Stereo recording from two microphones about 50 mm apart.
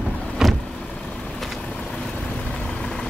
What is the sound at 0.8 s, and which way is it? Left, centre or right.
Vehicle, centre.